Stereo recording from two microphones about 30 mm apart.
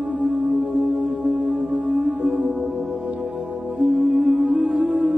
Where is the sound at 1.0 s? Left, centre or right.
Right.